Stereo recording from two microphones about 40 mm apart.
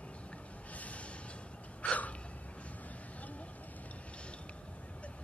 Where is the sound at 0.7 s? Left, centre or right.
Left.